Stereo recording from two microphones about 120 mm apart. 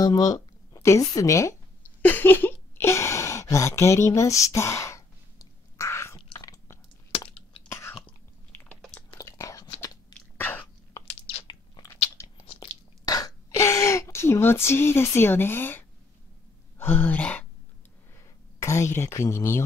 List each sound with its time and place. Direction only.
0.0 s music: 30° left (ahead or behind)
6.1 s chewing: 30° left (ahead or behind)
8.5 s chewing: 15° left (ahead or behind)
9.2 s biting: 25° left (ahead or behind)
10.1 s a sound: 15° left (ahead or behind)
11.1 s crunch: 60° left (ahead or behind)
12.2 s biting: 25° left (ahead or behind)
12.5 s chewing: 30° left (ahead or behind)
16.7 s speech: 15° left (ahead or behind)
18.6 s speech: 25° left (ahead or behind)